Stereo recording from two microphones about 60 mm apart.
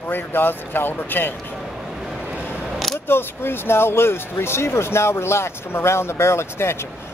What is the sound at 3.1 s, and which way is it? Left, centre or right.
Speech, left.